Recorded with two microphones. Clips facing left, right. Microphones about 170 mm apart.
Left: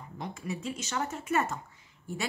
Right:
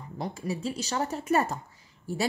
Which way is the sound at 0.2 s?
35° right (ahead or behind).